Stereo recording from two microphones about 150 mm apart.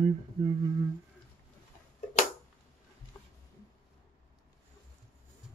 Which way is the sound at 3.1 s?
15° left (ahead or behind).